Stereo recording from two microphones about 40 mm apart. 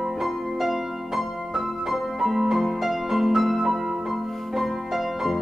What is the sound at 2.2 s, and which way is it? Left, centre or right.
Music, centre.